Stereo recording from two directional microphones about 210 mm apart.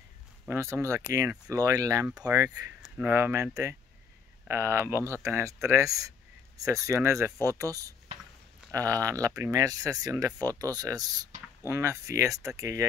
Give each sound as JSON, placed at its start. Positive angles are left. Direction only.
{"t": 0.5, "sound": "speech", "side_deg": -15}